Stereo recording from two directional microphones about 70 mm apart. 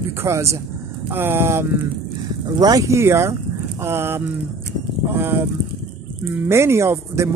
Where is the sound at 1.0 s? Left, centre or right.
Right.